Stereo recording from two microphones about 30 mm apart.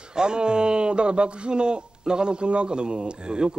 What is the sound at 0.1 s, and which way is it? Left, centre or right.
Speech, right.